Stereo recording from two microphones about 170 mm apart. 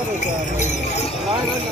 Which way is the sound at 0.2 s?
45° left (ahead or behind).